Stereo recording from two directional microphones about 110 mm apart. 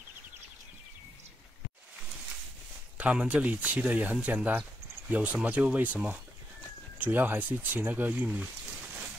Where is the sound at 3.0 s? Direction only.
10° right (ahead or behind).